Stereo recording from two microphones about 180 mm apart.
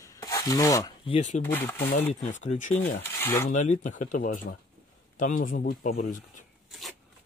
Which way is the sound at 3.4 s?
45° left (ahead or behind).